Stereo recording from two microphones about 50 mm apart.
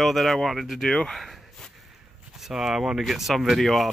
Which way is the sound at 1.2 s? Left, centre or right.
Centre.